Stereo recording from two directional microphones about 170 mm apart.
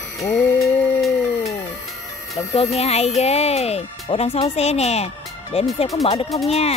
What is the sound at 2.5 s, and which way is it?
Speech, 40° left (ahead or behind).